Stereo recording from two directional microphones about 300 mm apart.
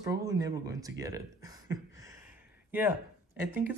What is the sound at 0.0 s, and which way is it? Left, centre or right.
Speech, centre.